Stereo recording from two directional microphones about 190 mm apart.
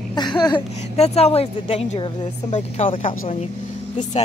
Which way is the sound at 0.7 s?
35° left (ahead or behind).